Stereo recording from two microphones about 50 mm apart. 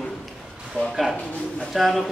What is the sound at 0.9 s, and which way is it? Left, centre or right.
A man's voice, centre.